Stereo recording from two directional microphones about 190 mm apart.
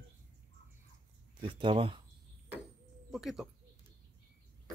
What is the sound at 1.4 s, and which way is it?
Speech, 25° right (ahead or behind).